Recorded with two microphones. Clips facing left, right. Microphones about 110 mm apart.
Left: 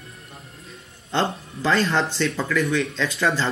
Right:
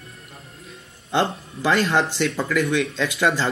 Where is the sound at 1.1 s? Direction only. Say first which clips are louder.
Right 2 dB; 10° right (ahead or behind).